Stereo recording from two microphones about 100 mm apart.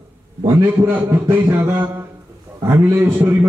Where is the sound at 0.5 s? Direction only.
25° right (ahead or behind).